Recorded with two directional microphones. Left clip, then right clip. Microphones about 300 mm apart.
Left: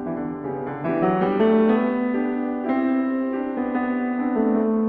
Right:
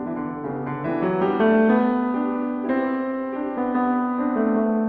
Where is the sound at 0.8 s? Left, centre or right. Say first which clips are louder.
Left 1 dB; centre.